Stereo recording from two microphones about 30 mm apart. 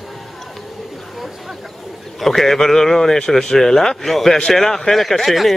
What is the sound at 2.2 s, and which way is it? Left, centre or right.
Speech, centre.